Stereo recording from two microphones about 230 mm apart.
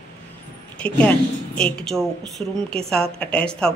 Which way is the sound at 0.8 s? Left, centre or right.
Centre.